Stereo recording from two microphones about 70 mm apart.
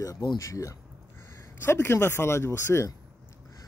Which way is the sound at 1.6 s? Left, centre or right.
Left.